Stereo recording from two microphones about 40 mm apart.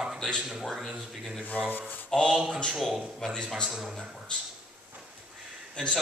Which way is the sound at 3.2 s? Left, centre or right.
Centre.